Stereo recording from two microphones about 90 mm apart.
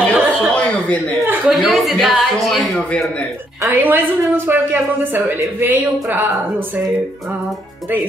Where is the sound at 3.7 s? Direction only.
20° right (ahead or behind).